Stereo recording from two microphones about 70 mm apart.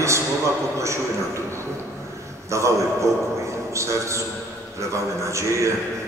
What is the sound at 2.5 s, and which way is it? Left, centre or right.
Speech, right.